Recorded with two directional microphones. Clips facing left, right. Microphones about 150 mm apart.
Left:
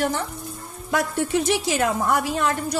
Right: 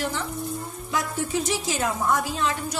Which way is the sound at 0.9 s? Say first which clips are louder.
Left 5 dB; 60° left (ahead or behind).